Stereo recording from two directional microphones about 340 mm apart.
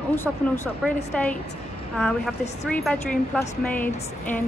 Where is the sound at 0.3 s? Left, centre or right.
Centre.